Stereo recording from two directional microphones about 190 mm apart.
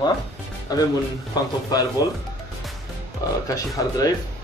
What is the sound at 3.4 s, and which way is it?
Speech, 20° left (ahead or behind).